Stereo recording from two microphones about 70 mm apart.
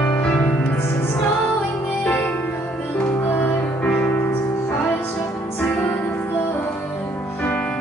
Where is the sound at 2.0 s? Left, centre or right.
Left.